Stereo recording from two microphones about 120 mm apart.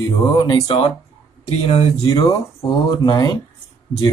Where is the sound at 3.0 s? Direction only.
35° left (ahead or behind).